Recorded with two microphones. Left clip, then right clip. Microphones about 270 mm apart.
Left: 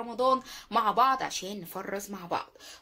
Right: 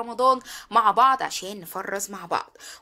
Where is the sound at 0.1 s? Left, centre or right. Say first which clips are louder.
Right 6 dB; right.